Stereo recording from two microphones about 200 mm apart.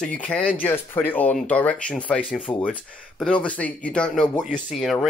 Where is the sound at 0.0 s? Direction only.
5° left (ahead or behind).